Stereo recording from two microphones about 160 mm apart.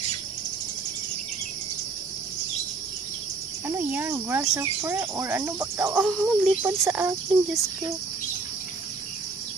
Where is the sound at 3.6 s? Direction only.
15° right (ahead or behind).